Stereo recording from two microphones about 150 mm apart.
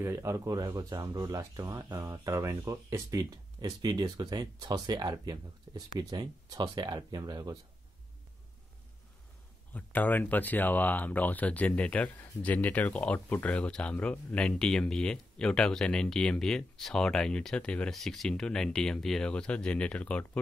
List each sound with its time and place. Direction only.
0.0 s speech: 20° right (ahead or behind)
9.8 s speech: 10° left (ahead or behind)